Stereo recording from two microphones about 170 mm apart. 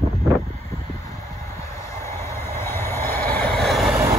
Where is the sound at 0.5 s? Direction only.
15° left (ahead or behind); by 4.0 s centre (ahead or behind).